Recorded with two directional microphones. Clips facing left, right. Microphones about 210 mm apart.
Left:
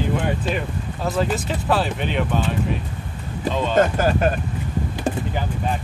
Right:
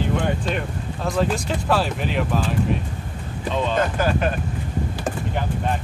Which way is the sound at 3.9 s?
45° left (ahead or behind).